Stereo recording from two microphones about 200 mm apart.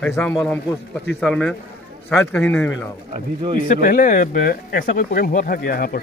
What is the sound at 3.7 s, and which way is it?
Speech, 40° left (ahead or behind).